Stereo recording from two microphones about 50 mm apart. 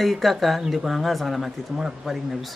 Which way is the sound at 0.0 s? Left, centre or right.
Centre.